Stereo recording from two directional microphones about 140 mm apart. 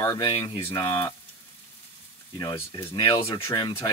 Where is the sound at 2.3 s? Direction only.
30° left (ahead or behind).